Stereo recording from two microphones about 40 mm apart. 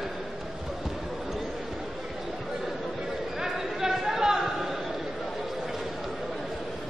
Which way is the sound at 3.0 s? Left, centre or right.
Centre.